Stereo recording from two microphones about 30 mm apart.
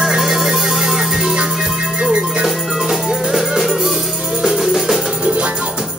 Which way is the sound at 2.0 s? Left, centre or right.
Right.